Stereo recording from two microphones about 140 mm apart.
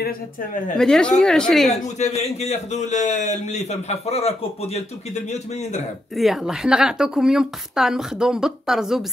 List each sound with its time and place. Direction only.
0.7 s a woman's voice: 5° left (ahead or behind)
2.0 s a man's voice: 50° left (ahead or behind)
6.1 s a woman's voice: centre (ahead or behind)